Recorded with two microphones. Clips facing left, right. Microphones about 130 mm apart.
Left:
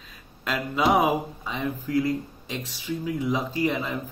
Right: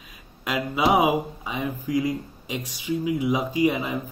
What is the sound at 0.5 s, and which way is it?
Speech, 10° right (ahead or behind).